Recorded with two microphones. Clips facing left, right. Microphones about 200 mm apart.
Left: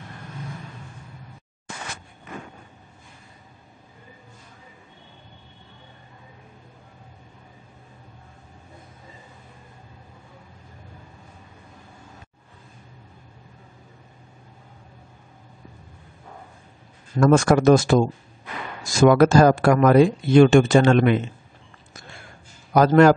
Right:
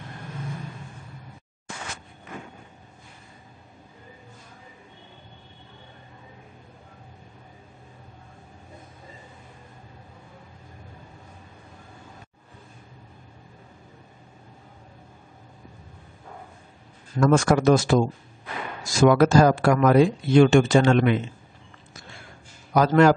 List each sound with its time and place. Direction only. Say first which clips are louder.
17.2 s speech: left 3 dB; 50° left (ahead or behind)
22.8 s speech: left 3 dB; 50° left (ahead or behind)